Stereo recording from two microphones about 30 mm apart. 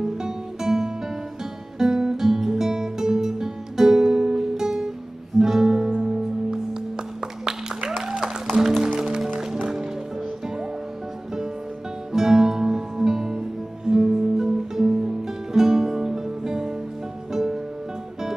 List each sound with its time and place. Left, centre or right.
0.0 s music: centre
12.1 s music: centre